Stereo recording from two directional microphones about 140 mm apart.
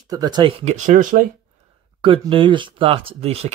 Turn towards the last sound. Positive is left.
turn(degrees=-45)  # may be behind; listen again after turning